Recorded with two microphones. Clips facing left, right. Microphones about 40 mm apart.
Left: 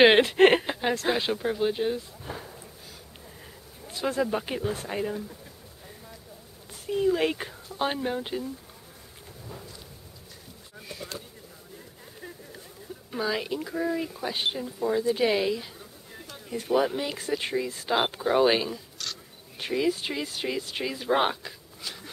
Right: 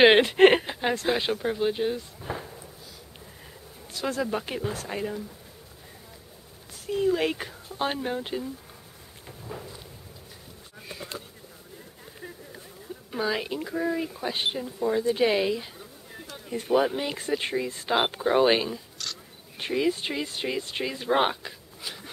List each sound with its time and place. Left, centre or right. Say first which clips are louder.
0.0 s speech: right 1 dB; centre
2.2 s a sound: right 3 dB; centre
4.3 s speech: left 1 dB; centre
6.9 s speech: even; centre
9.5 s a sound: right 5 dB; right
13.1 s speech: right 1 dB; centre